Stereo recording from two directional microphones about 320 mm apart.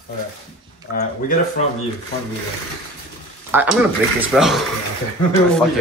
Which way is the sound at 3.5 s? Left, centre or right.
Centre.